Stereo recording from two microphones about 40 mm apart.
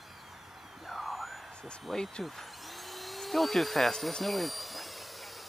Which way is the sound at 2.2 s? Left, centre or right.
Centre.